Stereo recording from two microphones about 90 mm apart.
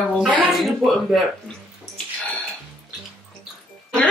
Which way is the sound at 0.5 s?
Centre (ahead or behind).